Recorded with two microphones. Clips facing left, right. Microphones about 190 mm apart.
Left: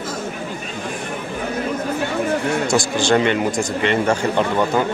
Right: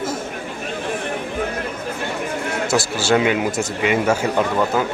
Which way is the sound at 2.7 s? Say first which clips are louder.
Right 1 dB; 5° right (ahead or behind).